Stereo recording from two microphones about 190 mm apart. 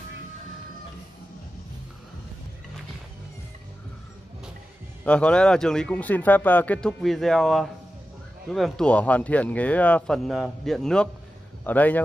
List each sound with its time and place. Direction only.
5.0 s a man's voice: 5° left (ahead or behind)